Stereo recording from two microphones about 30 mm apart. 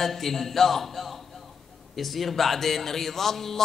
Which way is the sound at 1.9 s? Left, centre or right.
Centre.